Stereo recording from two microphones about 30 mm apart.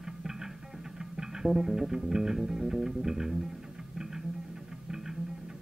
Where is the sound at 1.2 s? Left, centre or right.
Centre.